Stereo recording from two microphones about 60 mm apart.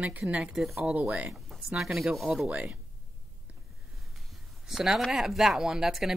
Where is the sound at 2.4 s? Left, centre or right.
Right.